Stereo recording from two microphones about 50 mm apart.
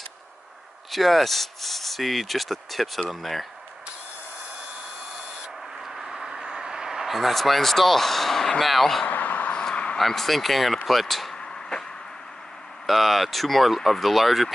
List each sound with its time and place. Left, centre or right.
0.9 s rub: centre
5.9 s vehicle: centre
8.5 s rub: centre
9.0 s a sound: left
9.5 s a sound: left
9.9 s rub: centre
11.3 s tick-tock: centre
12.8 s rub: centre